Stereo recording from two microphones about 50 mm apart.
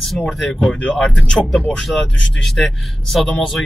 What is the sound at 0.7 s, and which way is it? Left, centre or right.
Speech, left.